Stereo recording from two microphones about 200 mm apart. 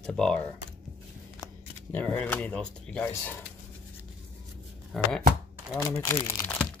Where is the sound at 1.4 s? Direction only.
10° left (ahead or behind).